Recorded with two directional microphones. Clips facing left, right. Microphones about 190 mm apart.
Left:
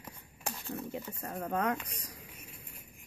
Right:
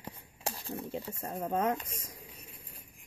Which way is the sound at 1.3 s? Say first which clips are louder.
Right 2 dB; 20° right (ahead or behind).